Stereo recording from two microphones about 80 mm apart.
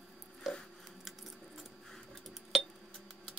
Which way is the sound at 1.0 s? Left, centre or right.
Centre.